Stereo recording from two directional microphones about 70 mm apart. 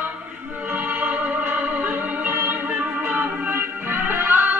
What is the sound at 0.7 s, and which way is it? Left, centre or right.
Music, right.